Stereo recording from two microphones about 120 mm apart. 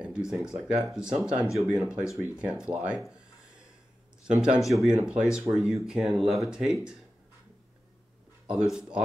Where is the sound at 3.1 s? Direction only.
5° right (ahead or behind).